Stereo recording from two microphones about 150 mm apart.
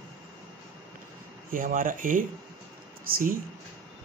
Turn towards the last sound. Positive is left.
turn(degrees=-65)  # may be behind; listen again after turning